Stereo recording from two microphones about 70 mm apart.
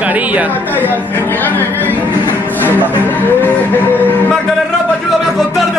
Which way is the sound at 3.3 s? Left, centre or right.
Left.